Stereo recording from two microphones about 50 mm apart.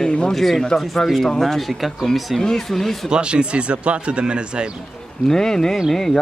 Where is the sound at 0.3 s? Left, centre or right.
Centre.